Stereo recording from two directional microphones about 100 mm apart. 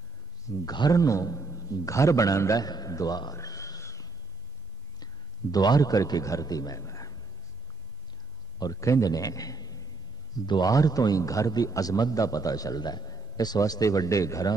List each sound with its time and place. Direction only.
0.7 s a man's voice: 40° left (ahead or behind)
8.7 s a man's voice: 30° left (ahead or behind)